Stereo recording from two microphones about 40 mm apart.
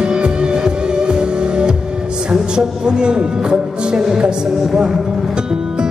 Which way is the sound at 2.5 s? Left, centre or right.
Right.